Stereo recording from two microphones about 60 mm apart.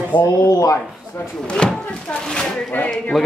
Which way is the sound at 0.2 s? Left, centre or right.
Left.